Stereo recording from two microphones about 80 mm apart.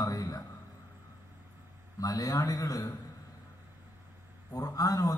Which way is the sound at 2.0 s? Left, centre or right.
Left.